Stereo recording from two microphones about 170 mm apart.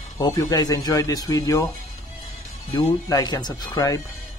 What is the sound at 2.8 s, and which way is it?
Speech, 20° left (ahead or behind).